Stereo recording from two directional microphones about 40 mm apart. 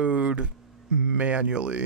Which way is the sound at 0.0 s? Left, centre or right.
Right.